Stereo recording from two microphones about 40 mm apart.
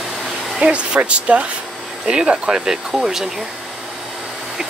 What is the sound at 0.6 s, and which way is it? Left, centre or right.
Speech, right.